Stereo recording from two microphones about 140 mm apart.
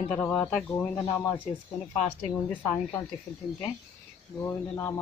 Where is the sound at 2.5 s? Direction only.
10° left (ahead or behind).